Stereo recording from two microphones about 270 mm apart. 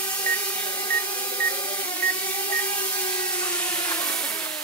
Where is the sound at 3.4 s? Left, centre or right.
Centre.